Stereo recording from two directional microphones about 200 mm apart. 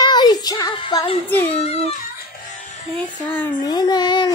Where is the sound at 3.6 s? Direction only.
20° left (ahead or behind).